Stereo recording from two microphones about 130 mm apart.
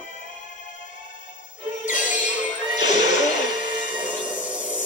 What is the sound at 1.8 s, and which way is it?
Music, 80° left.